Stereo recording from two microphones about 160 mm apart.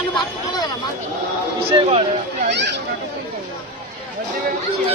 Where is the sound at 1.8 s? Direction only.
35° right (ahead or behind).